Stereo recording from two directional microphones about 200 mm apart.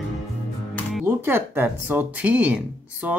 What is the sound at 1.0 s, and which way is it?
Speech, 10° right (ahead or behind).